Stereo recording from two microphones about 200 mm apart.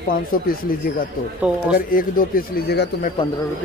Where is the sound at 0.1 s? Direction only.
45° left (ahead or behind).